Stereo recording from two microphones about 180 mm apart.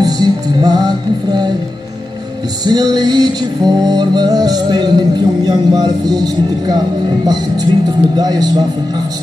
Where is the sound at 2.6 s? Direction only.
25° right (ahead or behind).